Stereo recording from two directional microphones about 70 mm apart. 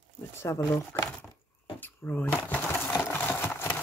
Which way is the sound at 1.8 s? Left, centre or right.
Left.